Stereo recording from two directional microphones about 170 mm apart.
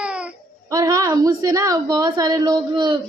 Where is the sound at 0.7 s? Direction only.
20° right (ahead or behind).